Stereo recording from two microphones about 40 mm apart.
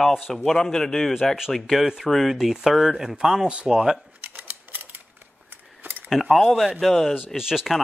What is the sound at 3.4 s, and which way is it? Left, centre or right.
Speech, right.